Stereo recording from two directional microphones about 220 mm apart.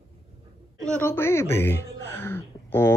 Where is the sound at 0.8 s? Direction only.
5° left (ahead or behind).